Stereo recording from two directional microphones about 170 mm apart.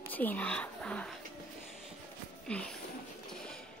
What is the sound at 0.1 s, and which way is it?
Speech, 10° left (ahead or behind).